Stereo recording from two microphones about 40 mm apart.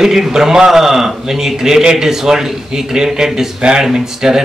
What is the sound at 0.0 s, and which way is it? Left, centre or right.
A man's voice, centre.